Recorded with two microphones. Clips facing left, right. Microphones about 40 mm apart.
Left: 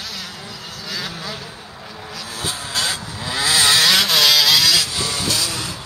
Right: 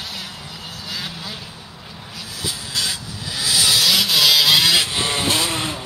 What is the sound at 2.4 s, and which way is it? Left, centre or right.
Vehicle, left.